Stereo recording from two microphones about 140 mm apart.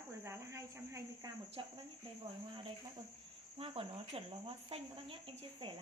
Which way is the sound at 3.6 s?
40° right (ahead or behind).